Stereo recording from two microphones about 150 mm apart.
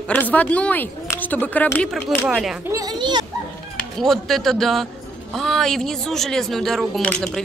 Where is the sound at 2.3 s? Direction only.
Centre (ahead or behind).